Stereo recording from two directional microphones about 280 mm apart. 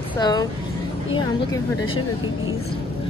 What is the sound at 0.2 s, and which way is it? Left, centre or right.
Speech, centre.